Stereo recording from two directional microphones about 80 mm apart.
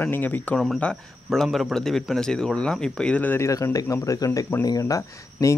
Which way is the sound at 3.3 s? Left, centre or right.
Left.